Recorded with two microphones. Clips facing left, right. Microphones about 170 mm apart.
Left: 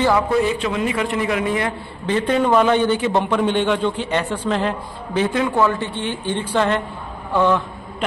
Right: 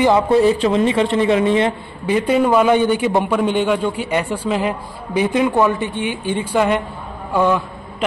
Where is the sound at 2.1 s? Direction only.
10° right (ahead or behind).